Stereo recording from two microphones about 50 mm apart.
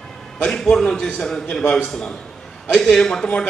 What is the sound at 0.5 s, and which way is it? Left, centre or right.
A man's voice, centre.